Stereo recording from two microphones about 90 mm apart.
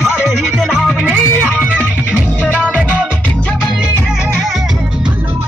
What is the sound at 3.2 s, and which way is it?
Music, 15° left (ahead or behind).